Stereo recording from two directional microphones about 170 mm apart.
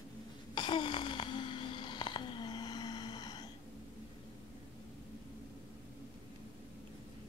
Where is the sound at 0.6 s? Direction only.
25° left (ahead or behind).